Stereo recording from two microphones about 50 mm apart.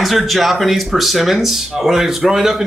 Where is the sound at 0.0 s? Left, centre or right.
Centre.